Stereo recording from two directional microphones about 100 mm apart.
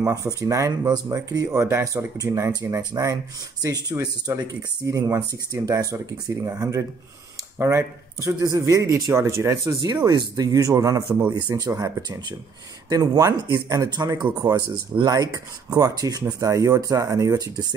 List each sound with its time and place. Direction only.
0.0 s speech: 35° right (ahead or behind)